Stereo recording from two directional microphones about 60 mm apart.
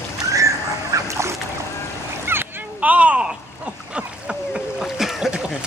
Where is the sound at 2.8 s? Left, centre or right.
Right.